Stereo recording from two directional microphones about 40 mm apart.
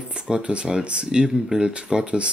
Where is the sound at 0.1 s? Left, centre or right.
Right.